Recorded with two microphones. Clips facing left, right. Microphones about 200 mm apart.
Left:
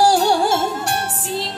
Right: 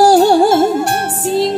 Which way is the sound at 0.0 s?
50° right (ahead or behind).